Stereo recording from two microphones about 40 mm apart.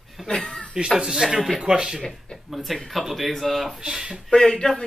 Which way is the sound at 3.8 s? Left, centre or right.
Centre.